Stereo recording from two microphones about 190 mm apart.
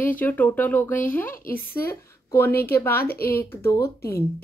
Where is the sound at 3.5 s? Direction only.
15° left (ahead or behind).